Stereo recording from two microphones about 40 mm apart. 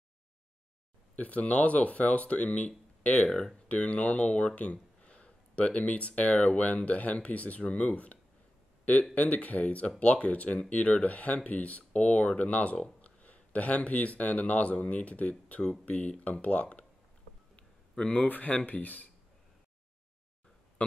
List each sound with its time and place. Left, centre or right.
1.1 s speech: left
3.3 s speech: centre
3.6 s speech: left
17.9 s speech: left
18.2 s speech: left